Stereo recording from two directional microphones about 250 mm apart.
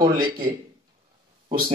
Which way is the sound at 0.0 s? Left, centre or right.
Centre.